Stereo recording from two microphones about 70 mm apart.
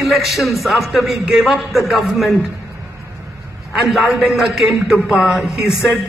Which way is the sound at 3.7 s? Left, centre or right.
Centre.